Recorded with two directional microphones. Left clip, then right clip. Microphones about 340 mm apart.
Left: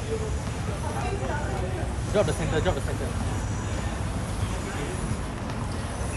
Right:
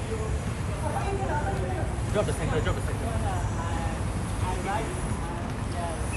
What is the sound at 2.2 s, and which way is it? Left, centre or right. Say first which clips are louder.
Speech: left 4 dB; left.